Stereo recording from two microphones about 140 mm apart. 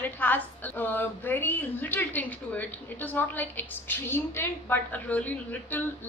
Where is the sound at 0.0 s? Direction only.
15° left (ahead or behind).